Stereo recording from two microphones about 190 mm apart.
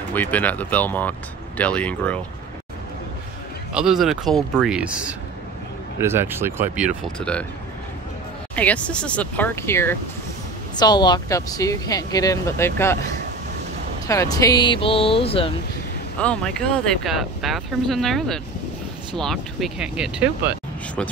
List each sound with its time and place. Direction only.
0.1 s speech: 10° left (ahead or behind)
3.7 s speech: 5° right (ahead or behind)
7.2 s speech: 5° left (ahead or behind)
8.5 s speech: 5° left (ahead or behind); by 15.5 s 30° left (ahead or behind)
16.2 s speech: 5° left (ahead or behind)